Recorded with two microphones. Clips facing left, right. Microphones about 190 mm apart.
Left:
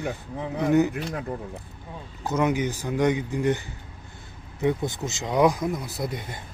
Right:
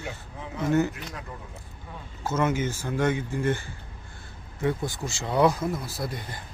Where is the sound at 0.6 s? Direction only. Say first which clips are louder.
Left 3 dB; 15° left (ahead or behind).